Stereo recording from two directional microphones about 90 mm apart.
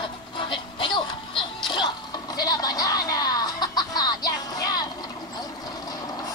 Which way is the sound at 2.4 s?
45° left (ahead or behind).